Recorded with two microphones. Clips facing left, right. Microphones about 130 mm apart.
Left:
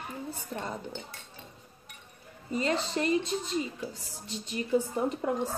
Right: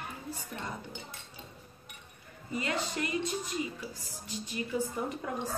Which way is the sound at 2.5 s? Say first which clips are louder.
Left 4 dB; 30° left (ahead or behind).